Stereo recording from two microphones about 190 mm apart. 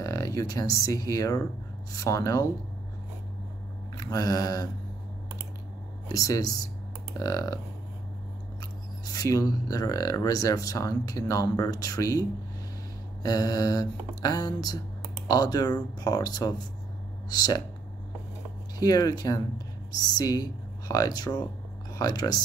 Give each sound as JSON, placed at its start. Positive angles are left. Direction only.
{"t": 0.0, "sound": "a sound", "side_deg": 15}
{"t": 0.7, "sound": "speech", "side_deg": 15}
{"t": 3.9, "sound": "mantra", "side_deg": 20}
{"t": 6.0, "sound": "speech", "side_deg": 20}
{"t": 9.1, "sound": "speech", "side_deg": 20}
{"t": 18.8, "sound": "speech", "side_deg": 20}